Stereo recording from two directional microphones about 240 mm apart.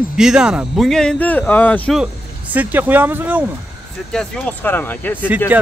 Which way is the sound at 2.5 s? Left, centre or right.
Centre.